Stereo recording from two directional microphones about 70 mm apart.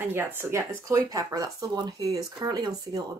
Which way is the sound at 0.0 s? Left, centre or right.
Right.